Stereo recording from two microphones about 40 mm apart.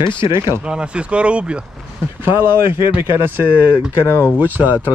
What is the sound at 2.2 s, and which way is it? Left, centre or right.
Speech, right.